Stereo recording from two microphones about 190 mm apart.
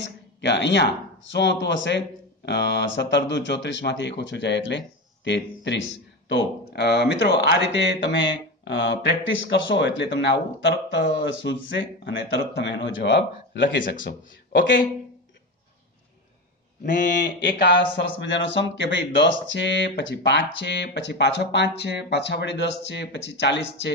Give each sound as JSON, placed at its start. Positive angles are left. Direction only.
{"t": 0.0, "sound": "a sound", "side_deg": 65}
{"t": 1.3, "sound": "speech", "side_deg": 65}
{"t": 17.0, "sound": "speech", "side_deg": 65}